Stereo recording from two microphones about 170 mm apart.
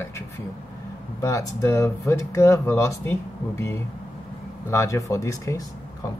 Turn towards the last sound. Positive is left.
turn(degrees=20)  # may be behind; listen again after turning